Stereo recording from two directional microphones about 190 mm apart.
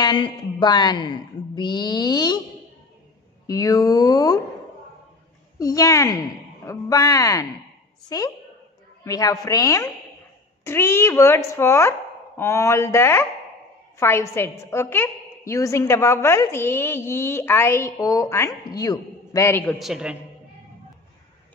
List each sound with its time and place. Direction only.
0.0 s speech: 25° left (ahead or behind)
3.4 s speech: 20° left (ahead or behind)
5.6 s a woman's voice: 20° left (ahead or behind); by 20.2 s 5° right (ahead or behind)